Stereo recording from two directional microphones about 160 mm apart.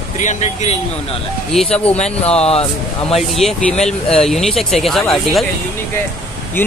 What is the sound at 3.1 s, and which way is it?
Speech, centre (ahead or behind).